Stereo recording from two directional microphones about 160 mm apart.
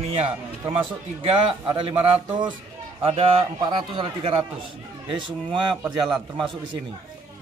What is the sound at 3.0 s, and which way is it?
A man's voice, 35° right (ahead or behind).